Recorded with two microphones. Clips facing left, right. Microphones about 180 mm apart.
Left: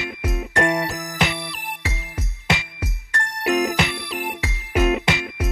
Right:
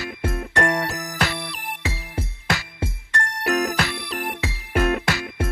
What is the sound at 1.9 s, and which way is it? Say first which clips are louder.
Music: right 3 dB; 30° right (ahead or behind).